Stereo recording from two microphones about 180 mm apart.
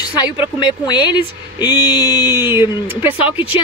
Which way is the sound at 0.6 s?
25° left (ahead or behind).